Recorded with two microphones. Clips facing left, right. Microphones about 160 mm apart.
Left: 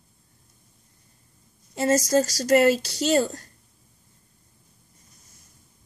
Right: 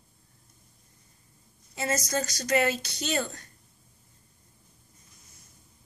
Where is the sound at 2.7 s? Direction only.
35° left (ahead or behind).